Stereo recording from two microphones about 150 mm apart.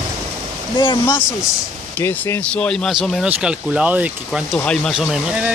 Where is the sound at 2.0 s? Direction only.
15° left (ahead or behind).